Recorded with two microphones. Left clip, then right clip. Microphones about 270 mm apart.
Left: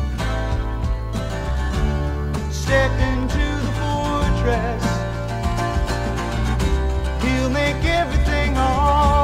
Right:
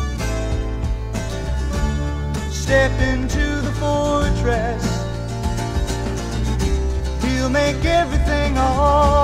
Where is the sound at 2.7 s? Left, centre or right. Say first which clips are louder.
Right 2 dB; centre.